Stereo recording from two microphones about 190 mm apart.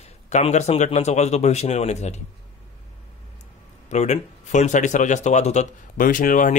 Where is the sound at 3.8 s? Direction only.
35° left (ahead or behind).